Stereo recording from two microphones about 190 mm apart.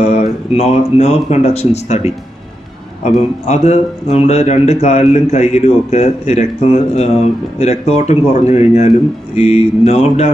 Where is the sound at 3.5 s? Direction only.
35° left (ahead or behind).